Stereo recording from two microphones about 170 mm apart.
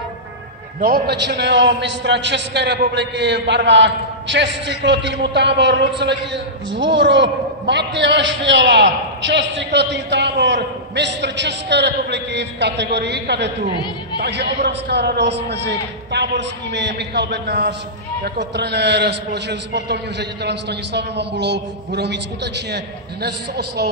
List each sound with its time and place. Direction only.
0.7 s a man's voice: 60° right (ahead or behind); by 13.5 s 90° right
14.2 s a man's voice: 80° right